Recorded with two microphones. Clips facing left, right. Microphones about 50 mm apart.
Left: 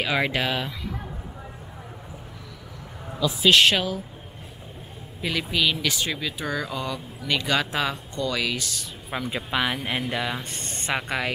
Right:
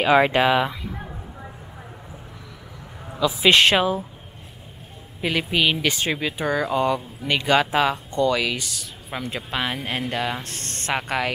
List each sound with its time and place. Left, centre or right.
0.0 s speech: right
3.1 s a sound: centre
3.4 s speech: right
5.2 s speech: centre
10.9 s speech: centre